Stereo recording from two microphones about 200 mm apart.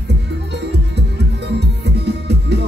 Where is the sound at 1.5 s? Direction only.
55° right (ahead or behind).